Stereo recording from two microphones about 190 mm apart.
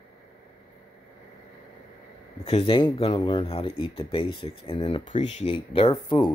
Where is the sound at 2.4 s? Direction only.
30° left (ahead or behind).